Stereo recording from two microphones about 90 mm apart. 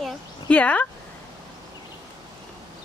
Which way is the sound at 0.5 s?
15° left (ahead or behind).